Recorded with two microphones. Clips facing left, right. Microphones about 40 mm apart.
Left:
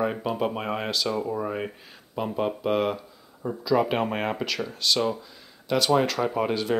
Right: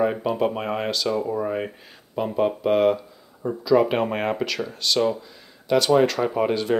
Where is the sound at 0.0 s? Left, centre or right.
Centre.